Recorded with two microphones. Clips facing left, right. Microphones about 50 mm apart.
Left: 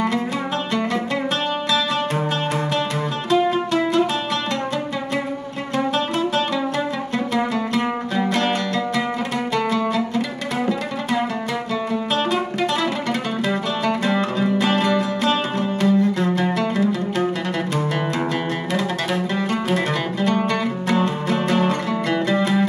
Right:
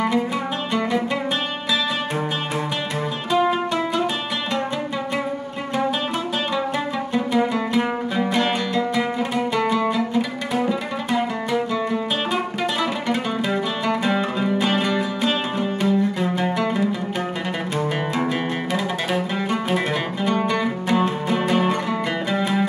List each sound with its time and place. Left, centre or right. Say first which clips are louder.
3.3 s music: left 1 dB; centre
8.3 s music: left 1 dB; centre
13.8 s music: left 1 dB; centre
20.2 s music: even; centre